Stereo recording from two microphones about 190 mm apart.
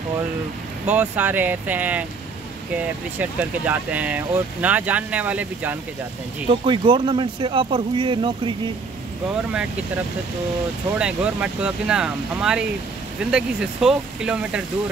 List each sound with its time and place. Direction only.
0.8 s speech: 10° right (ahead or behind)
6.5 s speech: 25° right (ahead or behind)
11.0 s speech: 5° right (ahead or behind)